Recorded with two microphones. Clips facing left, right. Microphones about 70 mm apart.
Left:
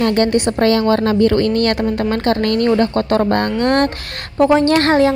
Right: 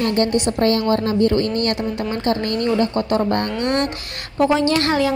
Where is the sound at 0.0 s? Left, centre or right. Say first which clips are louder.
Left 4 dB; left.